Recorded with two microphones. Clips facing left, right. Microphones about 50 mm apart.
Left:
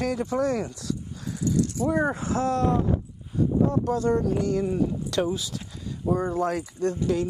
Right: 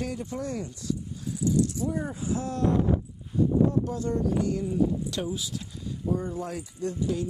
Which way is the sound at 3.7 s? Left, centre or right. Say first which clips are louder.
Left 5 dB; left.